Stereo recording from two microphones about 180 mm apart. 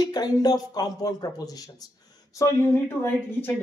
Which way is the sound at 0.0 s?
20° left (ahead or behind).